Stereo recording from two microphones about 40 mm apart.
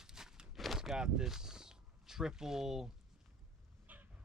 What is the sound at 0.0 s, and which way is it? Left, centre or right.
Walk, centre.